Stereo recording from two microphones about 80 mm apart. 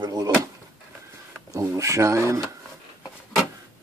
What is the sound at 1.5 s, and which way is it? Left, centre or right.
Speech, right.